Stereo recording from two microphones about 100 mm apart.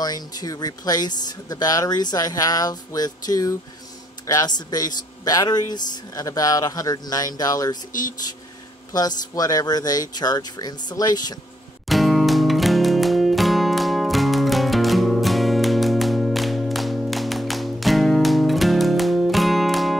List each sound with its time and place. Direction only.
0.0 s speech: 40° left (ahead or behind)
8.9 s speech: 40° left (ahead or behind)
11.9 s music: centre (ahead or behind)